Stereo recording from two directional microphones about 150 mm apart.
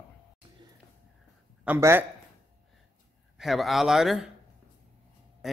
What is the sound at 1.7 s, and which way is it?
Speech, 15° right (ahead or behind).